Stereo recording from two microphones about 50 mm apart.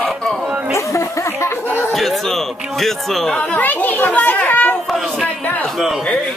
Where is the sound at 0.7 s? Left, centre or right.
Left.